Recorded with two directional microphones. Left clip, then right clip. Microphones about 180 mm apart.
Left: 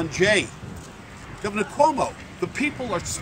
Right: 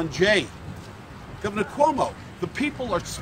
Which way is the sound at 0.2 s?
5° right (ahead or behind).